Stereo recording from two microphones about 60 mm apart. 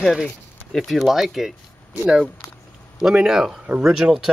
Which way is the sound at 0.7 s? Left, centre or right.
Centre.